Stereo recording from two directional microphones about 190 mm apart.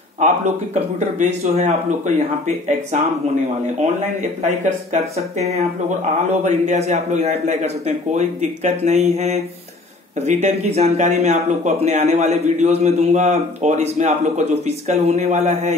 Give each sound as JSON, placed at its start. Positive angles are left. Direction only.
{"t": 0.2, "sound": "speech", "side_deg": -40}
{"t": 4.4, "sound": "speech", "side_deg": -35}